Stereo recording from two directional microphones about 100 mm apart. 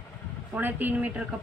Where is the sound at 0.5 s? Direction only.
15° right (ahead or behind).